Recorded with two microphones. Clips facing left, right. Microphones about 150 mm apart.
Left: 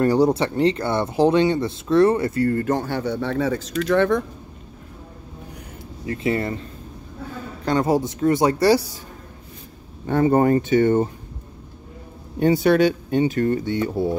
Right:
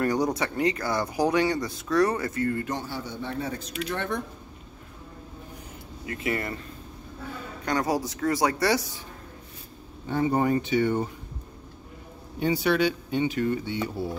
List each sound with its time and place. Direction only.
0.0 s speech: 30° left (ahead or behind); by 4.2 s 90° left
6.0 s speech: 25° left (ahead or behind)
7.6 s speech: 25° left (ahead or behind)
10.0 s speech: 55° left (ahead or behind)
12.4 s speech: 50° left (ahead or behind)